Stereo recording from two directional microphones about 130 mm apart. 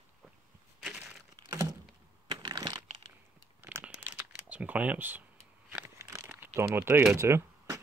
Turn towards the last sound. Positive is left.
turn(degrees=-20)  # may be behind; listen again after turning